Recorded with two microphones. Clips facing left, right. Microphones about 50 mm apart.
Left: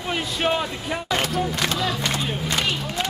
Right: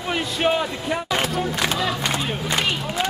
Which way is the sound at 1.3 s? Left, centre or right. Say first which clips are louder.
Right 1 dB; centre.